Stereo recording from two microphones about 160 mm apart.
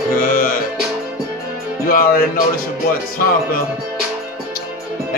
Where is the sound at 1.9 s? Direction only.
65° left (ahead or behind).